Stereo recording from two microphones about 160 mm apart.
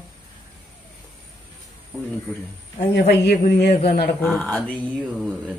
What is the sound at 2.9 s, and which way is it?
Speech, 90° left.